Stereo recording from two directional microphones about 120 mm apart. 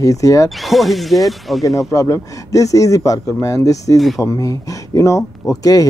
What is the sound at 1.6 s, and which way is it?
Speech, 25° left (ahead or behind).